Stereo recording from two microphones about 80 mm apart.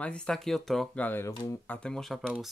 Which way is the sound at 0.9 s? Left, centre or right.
Left.